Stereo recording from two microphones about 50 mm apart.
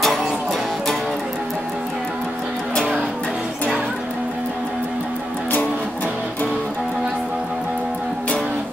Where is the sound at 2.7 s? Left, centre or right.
Centre.